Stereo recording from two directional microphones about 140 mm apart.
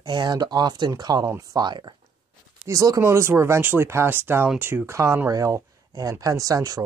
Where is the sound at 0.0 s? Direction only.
30° right (ahead or behind).